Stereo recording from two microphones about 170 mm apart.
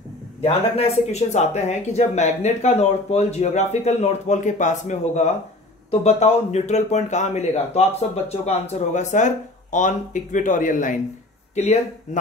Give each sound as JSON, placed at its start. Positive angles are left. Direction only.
{"t": 0.4, "sound": "speech", "side_deg": 35}